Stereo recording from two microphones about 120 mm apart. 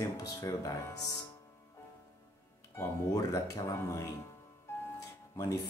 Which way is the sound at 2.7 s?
25° left (ahead or behind).